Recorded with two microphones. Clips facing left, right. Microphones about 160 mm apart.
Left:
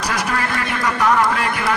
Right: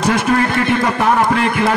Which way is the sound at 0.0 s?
25° right (ahead or behind).